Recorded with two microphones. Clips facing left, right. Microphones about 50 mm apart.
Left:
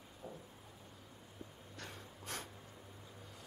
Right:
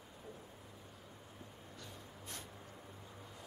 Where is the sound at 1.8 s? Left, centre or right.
Left.